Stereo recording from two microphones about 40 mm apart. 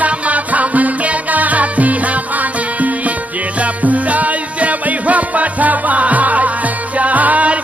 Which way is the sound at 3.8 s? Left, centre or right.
Right.